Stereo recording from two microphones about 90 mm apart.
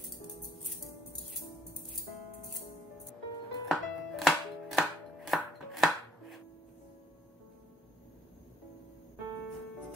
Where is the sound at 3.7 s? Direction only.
Centre (ahead or behind).